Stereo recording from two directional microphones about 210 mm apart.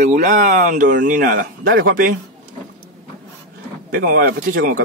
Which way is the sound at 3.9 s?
45° right (ahead or behind).